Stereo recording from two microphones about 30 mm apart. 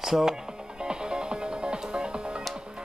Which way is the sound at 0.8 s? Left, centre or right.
Right.